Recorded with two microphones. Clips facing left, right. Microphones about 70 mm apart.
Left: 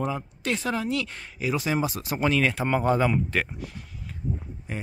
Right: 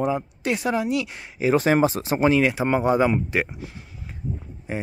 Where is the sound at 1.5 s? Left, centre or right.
Right.